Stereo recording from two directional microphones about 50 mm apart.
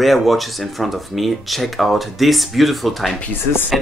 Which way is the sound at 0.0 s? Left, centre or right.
Centre.